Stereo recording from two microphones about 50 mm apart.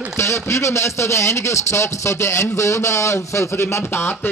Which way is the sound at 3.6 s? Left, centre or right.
Left.